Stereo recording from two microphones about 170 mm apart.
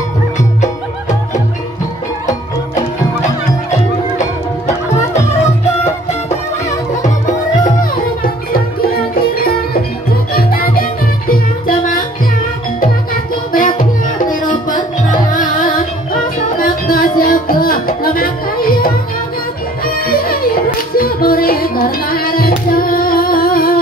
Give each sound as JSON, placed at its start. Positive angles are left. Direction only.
{"t": 7.0, "sound": "music", "side_deg": 50}
{"t": 13.1, "sound": "music", "side_deg": 55}